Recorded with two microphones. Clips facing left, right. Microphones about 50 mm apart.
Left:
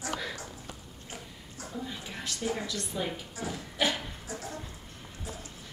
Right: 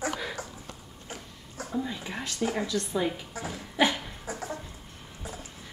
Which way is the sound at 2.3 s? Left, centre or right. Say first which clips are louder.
Right 3 dB; right.